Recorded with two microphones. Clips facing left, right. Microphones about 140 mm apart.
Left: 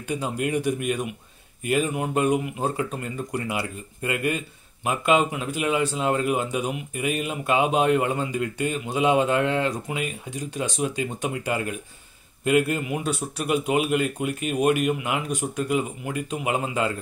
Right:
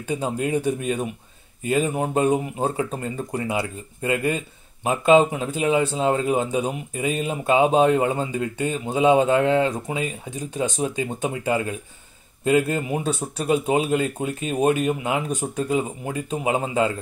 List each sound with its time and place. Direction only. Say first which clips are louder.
0.1 s speech: right 2 dB; 30° right (ahead or behind)